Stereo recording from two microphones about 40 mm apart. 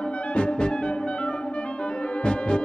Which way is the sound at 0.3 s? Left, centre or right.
Left.